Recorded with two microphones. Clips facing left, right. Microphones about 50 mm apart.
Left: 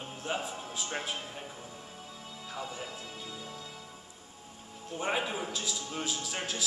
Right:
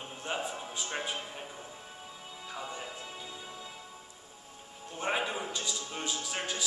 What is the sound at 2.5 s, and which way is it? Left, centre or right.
Speech, centre.